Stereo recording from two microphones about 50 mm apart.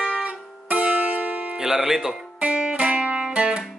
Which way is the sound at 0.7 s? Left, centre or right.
Right.